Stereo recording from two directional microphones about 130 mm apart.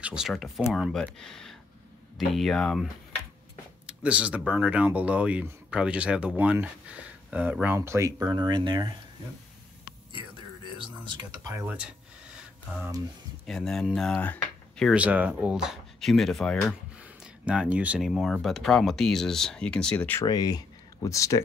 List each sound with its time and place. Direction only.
0.0 s speech: 5° right (ahead or behind)
3.8 s speech: 10° right (ahead or behind); by 8.9 s 35° right (ahead or behind)
10.8 s speech: 35° right (ahead or behind)
11.5 s speech: 10° right (ahead or behind)
12.4 s a sound: 5° right (ahead or behind)
13.5 s speech: 5° left (ahead or behind)
14.9 s speech: 10° right (ahead or behind)
17.0 s speech: 5° right (ahead or behind)
20.2 s speech: 30° left (ahead or behind)